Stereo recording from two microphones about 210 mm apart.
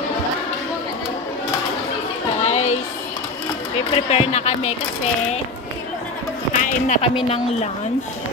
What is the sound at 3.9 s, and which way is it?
Speech, 30° left (ahead or behind).